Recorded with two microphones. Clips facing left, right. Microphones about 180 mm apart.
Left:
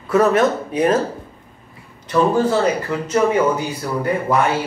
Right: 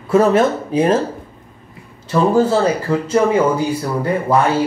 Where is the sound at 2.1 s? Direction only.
30° right (ahead or behind).